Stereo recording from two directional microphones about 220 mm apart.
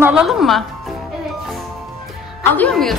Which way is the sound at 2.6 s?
5° left (ahead or behind).